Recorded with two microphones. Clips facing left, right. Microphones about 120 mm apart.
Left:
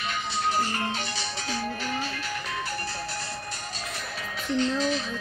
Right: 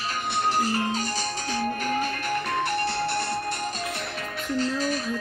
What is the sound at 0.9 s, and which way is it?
Music, 45° right (ahead or behind).